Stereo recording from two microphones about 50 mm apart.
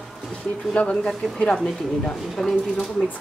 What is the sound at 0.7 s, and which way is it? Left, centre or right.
Speech, centre.